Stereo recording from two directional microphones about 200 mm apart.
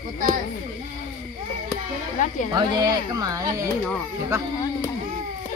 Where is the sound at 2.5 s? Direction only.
20° right (ahead or behind).